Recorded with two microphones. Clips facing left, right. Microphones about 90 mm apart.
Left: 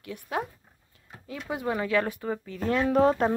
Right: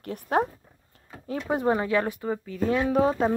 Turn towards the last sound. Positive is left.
turn(degrees=-5)  # may be behind; listen again after turning